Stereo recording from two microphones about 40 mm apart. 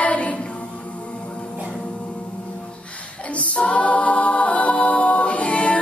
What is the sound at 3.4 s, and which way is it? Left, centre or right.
A capella, left.